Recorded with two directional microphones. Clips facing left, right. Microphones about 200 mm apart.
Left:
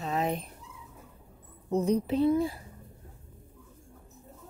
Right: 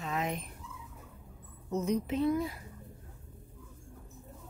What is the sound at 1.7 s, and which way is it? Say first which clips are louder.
Speech: left 5 dB; 35° left (ahead or behind).